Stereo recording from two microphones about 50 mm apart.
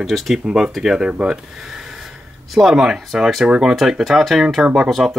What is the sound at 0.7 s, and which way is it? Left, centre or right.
Speech, centre.